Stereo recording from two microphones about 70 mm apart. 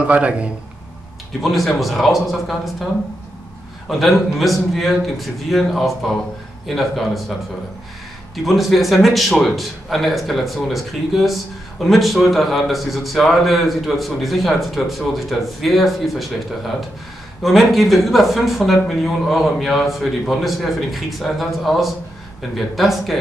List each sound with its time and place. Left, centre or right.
0.0 s a man's voice: centre
1.4 s a man's voice: centre
4.0 s a man's voice: centre
8.5 s a man's voice: centre